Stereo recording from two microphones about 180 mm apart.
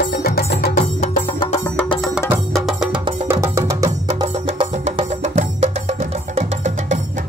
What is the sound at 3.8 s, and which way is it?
Music, 35° right (ahead or behind).